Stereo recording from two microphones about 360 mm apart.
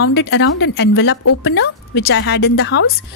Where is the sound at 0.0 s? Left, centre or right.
Left.